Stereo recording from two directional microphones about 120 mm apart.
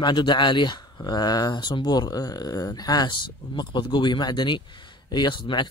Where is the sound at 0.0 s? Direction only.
40° left (ahead or behind).